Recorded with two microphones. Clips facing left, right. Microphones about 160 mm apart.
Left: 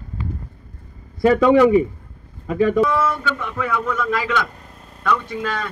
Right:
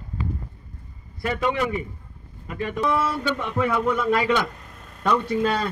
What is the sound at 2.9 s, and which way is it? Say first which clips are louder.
Speech: left 2 dB; 30° right (ahead or behind).